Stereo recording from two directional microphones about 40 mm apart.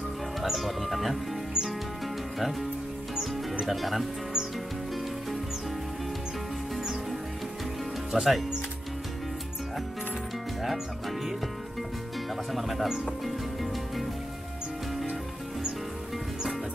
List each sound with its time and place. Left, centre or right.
0.4 s speech: centre
3.2 s music: centre
3.7 s speech: centre
8.1 s speech: centre
12.5 s speech: centre